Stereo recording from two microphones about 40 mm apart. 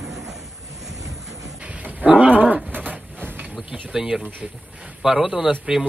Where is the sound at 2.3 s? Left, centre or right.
Right.